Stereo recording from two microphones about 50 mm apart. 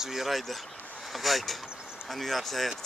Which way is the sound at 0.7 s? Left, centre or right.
Left.